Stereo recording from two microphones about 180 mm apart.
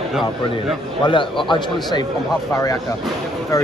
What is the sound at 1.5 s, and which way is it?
Speech, 25° left (ahead or behind).